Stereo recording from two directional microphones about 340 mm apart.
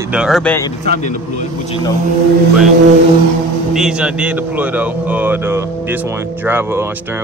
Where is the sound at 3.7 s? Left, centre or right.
Centre.